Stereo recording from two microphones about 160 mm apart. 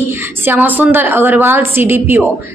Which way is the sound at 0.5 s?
10° right (ahead or behind).